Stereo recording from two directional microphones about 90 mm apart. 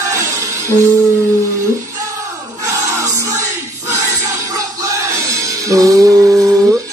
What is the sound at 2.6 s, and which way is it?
Music, 40° right (ahead or behind).